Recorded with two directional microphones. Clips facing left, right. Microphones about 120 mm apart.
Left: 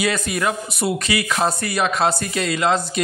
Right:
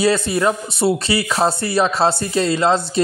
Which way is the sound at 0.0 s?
30° right (ahead or behind).